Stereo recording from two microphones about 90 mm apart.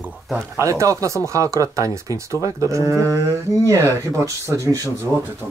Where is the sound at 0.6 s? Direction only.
35° right (ahead or behind).